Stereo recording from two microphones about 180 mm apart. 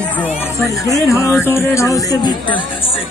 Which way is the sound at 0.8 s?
15° left (ahead or behind).